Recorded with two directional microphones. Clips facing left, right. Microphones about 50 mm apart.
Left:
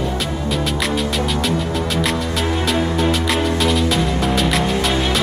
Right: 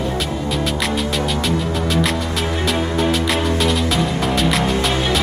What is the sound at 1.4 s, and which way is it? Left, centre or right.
Music, centre.